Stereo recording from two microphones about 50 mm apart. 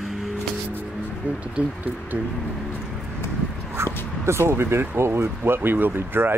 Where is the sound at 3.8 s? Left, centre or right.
Right.